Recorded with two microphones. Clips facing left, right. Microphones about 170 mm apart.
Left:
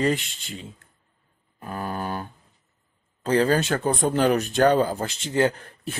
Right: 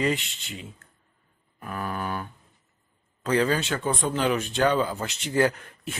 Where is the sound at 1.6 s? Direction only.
35° left (ahead or behind).